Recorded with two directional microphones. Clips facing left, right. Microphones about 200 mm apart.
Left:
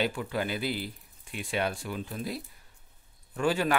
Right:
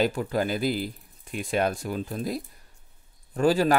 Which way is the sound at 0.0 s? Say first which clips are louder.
Right 5 dB; 40° right (ahead or behind).